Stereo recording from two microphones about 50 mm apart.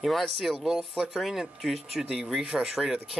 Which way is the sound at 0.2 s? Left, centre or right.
Centre.